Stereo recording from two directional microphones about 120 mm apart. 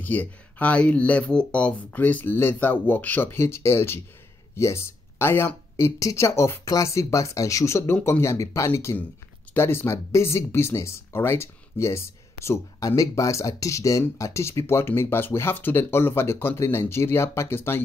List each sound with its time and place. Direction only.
0.0 s speech: 15° left (ahead or behind)